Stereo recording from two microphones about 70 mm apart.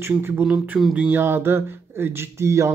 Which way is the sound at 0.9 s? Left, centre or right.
Right.